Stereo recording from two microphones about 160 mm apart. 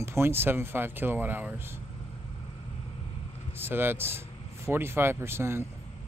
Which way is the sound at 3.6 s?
15° right (ahead or behind).